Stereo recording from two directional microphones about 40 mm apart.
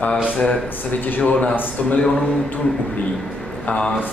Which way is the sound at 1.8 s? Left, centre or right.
Left.